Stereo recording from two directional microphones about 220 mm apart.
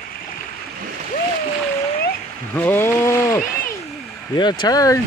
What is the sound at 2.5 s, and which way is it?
Speech, 10° left (ahead or behind).